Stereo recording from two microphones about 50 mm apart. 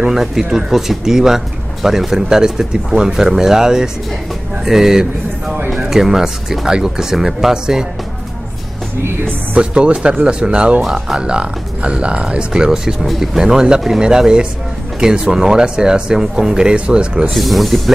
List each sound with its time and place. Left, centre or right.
0.1 s speech: centre
9.6 s speech: centre
13.4 s speech: centre
17.3 s speech: centre